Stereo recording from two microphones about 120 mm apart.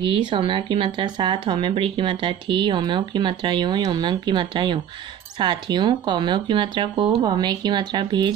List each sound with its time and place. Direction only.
0.0 s speech: 45° right (ahead or behind)